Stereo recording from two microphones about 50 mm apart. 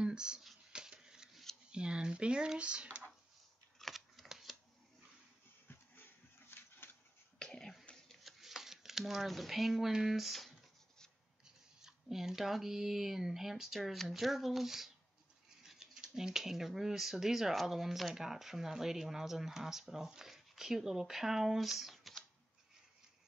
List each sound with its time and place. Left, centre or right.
0.0 s a sound: centre
1.7 s speech: centre
3.8 s shuffling cards: centre
6.5 s a sound: left
7.3 s cough: centre
8.1 s speech: centre
11.8 s speech: centre